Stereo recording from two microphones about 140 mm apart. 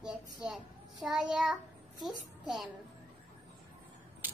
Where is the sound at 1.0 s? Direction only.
Centre (ahead or behind).